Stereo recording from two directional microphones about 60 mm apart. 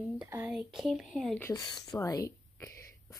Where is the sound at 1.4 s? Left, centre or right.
Left.